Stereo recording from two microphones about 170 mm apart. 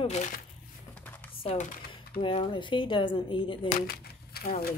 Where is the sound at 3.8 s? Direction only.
60° left (ahead or behind).